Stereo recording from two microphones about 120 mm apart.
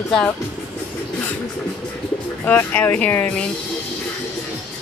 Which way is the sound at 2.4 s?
15° left (ahead or behind).